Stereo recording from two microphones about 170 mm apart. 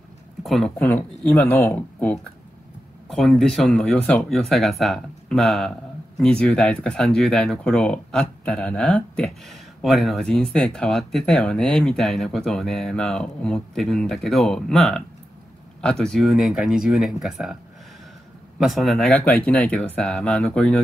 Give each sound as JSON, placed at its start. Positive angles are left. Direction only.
{"t": 0.4, "sound": "speech", "side_deg": 0}
{"t": 18.6, "sound": "speech", "side_deg": 0}